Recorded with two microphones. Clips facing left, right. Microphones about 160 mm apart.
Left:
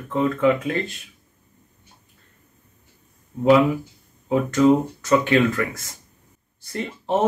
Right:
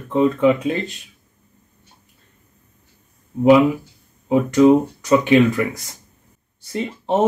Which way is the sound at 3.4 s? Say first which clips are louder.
Right 3 dB; 15° right (ahead or behind).